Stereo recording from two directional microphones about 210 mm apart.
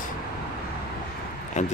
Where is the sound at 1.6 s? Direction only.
35° left (ahead or behind).